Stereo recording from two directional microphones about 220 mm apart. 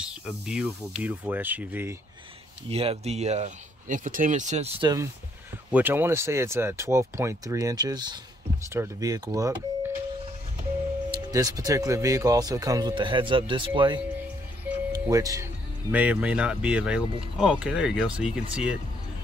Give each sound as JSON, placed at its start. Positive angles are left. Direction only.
{"t": 0.0, "sound": "speech", "side_deg": -5}
{"t": 2.7, "sound": "speech", "side_deg": -25}
{"t": 11.1, "sound": "speech", "side_deg": -15}
{"t": 15.0, "sound": "speech", "side_deg": -15}